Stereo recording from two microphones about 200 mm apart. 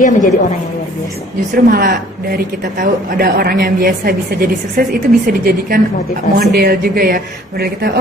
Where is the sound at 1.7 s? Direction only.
45° right (ahead or behind).